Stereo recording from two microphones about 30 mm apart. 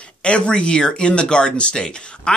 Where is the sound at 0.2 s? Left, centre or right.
Left.